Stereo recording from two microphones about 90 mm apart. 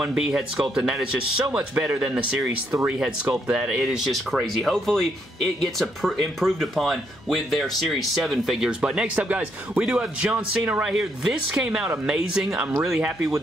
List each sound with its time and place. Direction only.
0.0 s speech: 10° right (ahead or behind)